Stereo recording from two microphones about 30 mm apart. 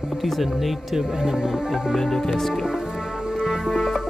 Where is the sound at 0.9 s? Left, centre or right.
Centre.